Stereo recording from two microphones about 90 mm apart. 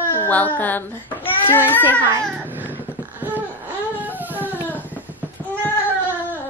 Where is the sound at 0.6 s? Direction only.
20° left (ahead or behind).